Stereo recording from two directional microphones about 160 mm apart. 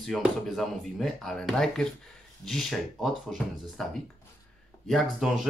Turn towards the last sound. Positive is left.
turn(degrees=0)  # may be behind; listen again after turning